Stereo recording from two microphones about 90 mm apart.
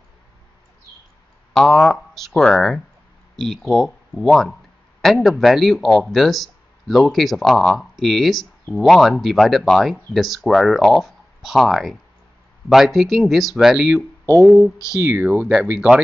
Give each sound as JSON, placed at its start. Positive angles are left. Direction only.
{"t": 1.5, "sound": "speech", "side_deg": 5}
{"t": 15.1, "sound": "speech", "side_deg": -15}